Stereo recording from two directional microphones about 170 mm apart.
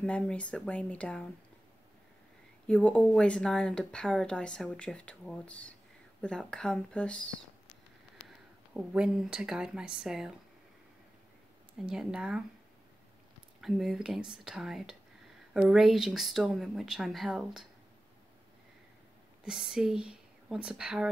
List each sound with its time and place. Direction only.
0.3 s speech: 5° left (ahead or behind)
2.6 s speech: 5° left (ahead or behind)
8.7 s speech: 5° right (ahead or behind)
11.8 s speech: 5° right (ahead or behind)
13.6 s speech: centre (ahead or behind)
19.4 s speech: 5° right (ahead or behind)